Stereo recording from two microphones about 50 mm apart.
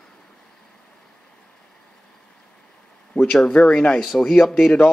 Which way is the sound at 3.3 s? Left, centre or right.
Centre.